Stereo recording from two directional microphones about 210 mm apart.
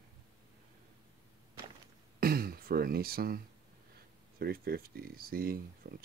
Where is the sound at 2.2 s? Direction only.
45° right (ahead or behind).